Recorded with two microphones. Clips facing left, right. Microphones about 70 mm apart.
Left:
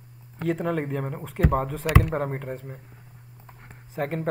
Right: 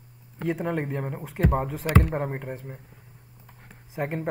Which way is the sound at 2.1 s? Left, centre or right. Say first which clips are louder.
Left 1 dB; centre.